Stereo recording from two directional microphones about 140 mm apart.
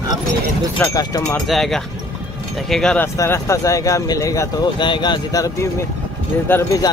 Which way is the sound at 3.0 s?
20° left (ahead or behind).